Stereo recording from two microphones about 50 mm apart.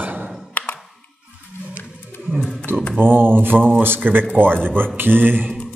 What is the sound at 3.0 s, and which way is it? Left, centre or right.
A man's voice, right.